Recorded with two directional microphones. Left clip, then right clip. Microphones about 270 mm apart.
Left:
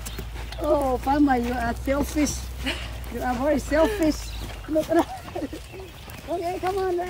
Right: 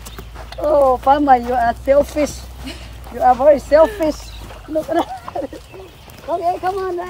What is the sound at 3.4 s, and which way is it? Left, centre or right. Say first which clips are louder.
Speech: right 10 dB; centre.